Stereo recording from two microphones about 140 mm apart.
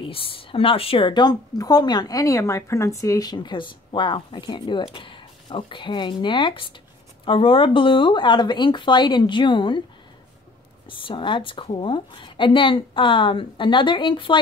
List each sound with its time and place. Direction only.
0.0 s speech: 40° left (ahead or behind)
10.9 s speech: 35° left (ahead or behind)